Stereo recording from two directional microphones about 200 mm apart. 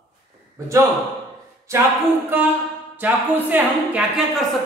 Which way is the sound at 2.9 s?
10° right (ahead or behind).